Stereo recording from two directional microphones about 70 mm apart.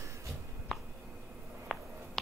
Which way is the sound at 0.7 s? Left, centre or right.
Centre.